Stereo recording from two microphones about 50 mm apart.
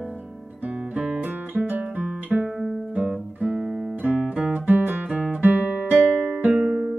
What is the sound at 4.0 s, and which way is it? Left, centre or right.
Guitar, right.